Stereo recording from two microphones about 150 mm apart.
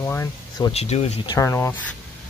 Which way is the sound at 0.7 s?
40° left (ahead or behind).